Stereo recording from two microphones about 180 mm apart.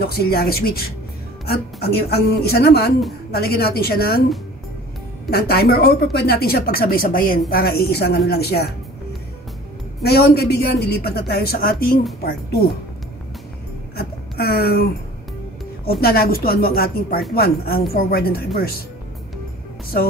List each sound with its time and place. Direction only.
0.0 s a woman's voice: 60° left (ahead or behind)
5.3 s a woman's voice: 60° left (ahead or behind)
10.0 s a woman's voice: 60° left (ahead or behind)
13.9 s a sound: 60° left (ahead or behind)
16.0 s a woman's voice: 60° left (ahead or behind)